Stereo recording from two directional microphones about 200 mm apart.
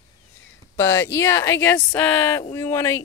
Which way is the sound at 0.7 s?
15° left (ahead or behind).